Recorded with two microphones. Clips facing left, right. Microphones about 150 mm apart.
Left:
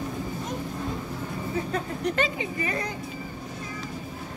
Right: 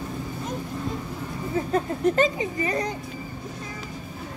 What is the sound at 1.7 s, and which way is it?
Speech, 40° right (ahead or behind).